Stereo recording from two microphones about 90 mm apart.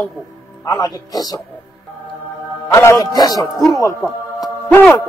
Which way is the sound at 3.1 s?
45° left (ahead or behind).